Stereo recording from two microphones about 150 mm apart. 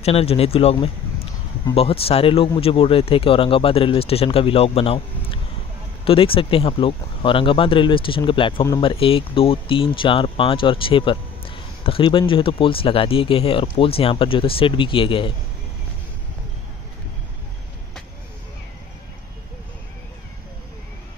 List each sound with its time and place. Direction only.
0.0 s speech: 40° left (ahead or behind)